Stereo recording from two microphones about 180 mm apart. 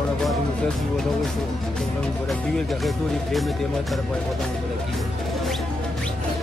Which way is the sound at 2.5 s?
Centre (ahead or behind).